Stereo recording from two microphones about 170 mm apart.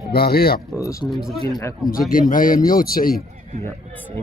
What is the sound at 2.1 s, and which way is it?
Speech, 55° left (ahead or behind).